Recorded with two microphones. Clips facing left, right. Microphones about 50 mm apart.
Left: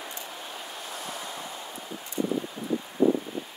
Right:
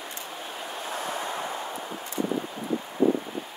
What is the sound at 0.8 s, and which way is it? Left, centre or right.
Vehicle, right.